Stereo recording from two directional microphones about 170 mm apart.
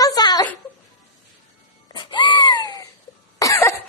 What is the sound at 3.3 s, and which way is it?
Cough, 20° left (ahead or behind).